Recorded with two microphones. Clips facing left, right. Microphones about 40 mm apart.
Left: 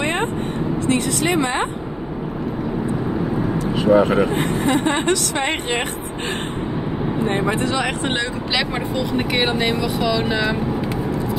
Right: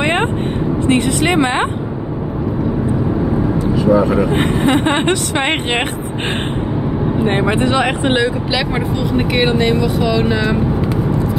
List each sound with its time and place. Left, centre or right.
0.0 s vehicle: right
0.8 s speech: right
3.8 s speech: left
4.3 s speech: right
7.2 s speech: right
8.2 s speech: centre